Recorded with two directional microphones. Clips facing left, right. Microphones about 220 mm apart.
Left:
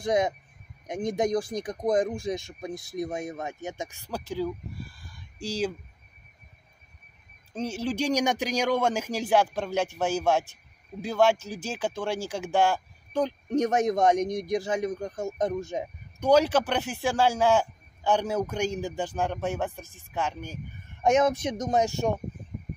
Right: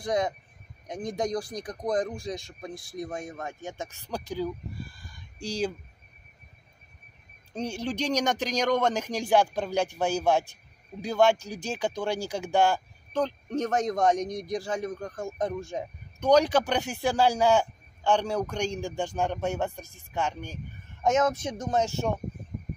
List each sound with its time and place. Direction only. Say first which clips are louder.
0.0 s speech: left 3 dB; 20° left (ahead or behind); by 5.7 s 5° left (ahead or behind)
7.5 s a man's voice: left 2 dB; 5° left (ahead or behind)
13.2 s a man's voice: left 3 dB; 15° left (ahead or behind)